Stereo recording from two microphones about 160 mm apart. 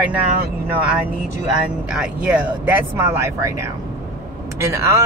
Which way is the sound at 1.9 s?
5° right (ahead or behind).